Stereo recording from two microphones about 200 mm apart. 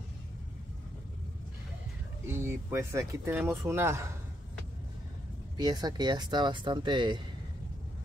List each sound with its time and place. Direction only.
2.2 s speech: 10° right (ahead or behind)
5.6 s speech: 20° right (ahead or behind)